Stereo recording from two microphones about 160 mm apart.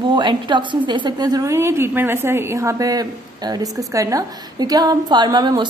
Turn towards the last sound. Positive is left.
turn(degrees=-25)  # may be behind; listen again after turning